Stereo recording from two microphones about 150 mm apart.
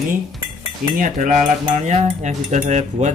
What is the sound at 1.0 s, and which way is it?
Cutlery, 60° right (ahead or behind).